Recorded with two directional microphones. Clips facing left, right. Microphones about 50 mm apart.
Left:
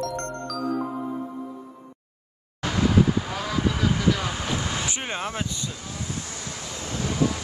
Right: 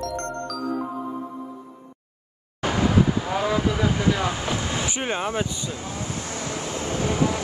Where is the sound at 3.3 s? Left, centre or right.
Right.